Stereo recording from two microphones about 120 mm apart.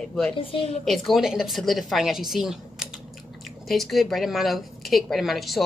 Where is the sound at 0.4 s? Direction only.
50° left (ahead or behind).